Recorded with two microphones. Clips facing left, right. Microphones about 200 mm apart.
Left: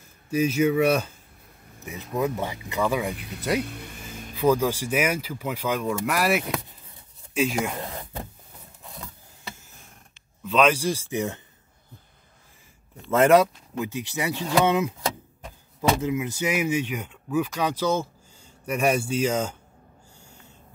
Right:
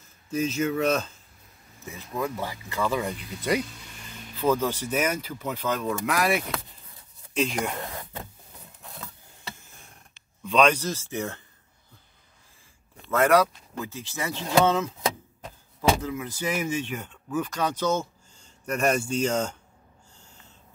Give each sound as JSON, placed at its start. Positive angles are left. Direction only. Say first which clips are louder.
{"t": 0.3, "sound": "speech", "louder": "left 4 dB", "side_deg": 10}
{"t": 3.2, "sound": "speech", "louder": "even", "side_deg": 60}
{"t": 4.4, "sound": "speech", "louder": "left 3 dB", "side_deg": 10}
{"t": 10.4, "sound": "speech", "louder": "left 1 dB", "side_deg": 5}
{"t": 13.1, "sound": "speech", "louder": "left 3 dB", "side_deg": 25}
{"t": 16.0, "sound": "speech", "louder": "left 5 dB", "side_deg": 20}